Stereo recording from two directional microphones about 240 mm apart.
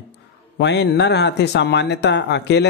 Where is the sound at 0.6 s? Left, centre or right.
Left.